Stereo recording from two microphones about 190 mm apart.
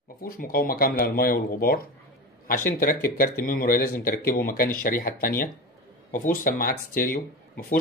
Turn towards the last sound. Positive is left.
turn(degrees=50)  # may be behind; listen again after turning